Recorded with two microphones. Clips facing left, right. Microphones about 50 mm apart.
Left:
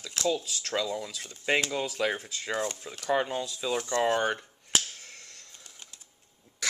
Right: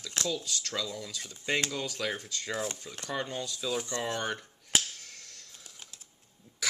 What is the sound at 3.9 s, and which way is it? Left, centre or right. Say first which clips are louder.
Speech: left 8 dB; left.